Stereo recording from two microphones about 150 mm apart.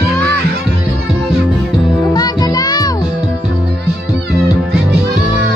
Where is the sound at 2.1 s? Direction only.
25° left (ahead or behind).